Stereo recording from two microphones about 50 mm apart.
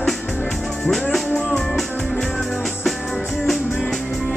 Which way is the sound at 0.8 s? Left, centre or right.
Centre.